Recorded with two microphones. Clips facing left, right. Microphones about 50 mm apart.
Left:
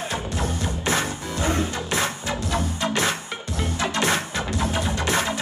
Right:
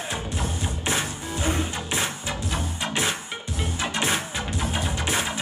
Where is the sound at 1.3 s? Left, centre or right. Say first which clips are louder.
Left 2 dB; centre.